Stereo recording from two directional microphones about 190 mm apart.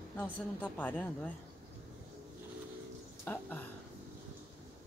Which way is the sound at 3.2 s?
10° left (ahead or behind).